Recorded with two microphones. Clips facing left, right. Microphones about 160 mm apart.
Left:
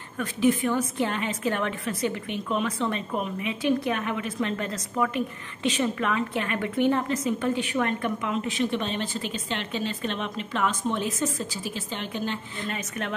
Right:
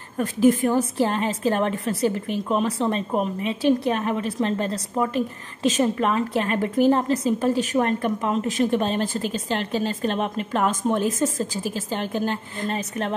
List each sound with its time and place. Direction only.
0.2 s a woman's voice: 45° right (ahead or behind)